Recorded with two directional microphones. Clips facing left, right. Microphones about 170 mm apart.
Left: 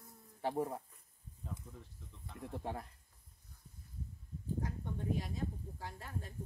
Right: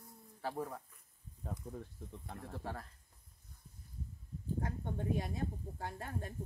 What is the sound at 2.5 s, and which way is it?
Speech, 20° left (ahead or behind).